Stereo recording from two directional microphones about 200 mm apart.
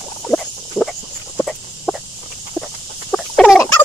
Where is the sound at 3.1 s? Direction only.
Centre (ahead or behind).